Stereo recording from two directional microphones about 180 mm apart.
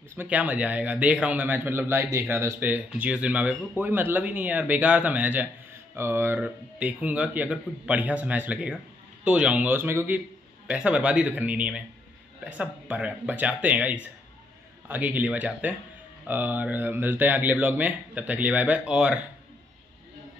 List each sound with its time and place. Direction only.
0.1 s speech: 10° right (ahead or behind)